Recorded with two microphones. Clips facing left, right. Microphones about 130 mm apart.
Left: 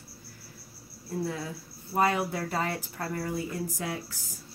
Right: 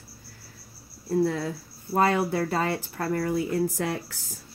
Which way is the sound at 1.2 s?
70° right (ahead or behind).